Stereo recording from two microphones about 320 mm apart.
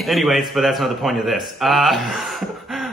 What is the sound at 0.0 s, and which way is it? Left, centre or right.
Speech, centre.